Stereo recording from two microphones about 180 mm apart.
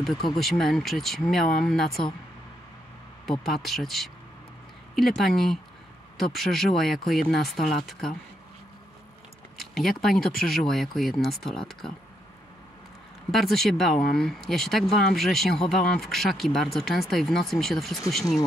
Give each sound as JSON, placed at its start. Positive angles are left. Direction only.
{"t": 0.4, "sound": "speech", "side_deg": 0}
{"t": 3.3, "sound": "speech", "side_deg": 0}
{"t": 9.6, "sound": "speech", "side_deg": 0}
{"t": 13.3, "sound": "speech", "side_deg": 0}